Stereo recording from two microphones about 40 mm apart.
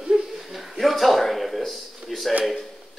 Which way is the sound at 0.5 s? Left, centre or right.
Centre.